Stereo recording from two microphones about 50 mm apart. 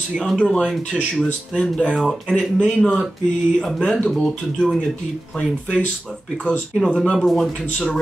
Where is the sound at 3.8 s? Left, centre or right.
Left.